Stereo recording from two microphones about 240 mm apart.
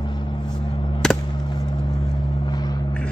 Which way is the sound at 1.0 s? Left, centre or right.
Centre.